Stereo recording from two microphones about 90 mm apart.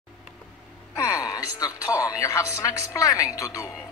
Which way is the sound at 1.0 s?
40° left (ahead or behind).